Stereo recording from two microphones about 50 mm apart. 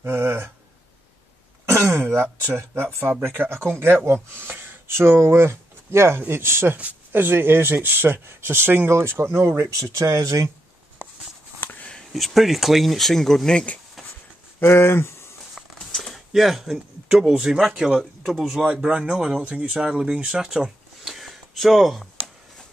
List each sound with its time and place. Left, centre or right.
0.0 s speech: right
1.7 s throat clearing: right
2.4 s speech: right
6.2 s speech: right
6.8 s speech: right
11.6 s a sound: left
12.1 s speech: centre
14.6 s speech: left
15.8 s a sound: centre
16.3 s speech: centre
19.4 s speech: right; by 22.0 s centre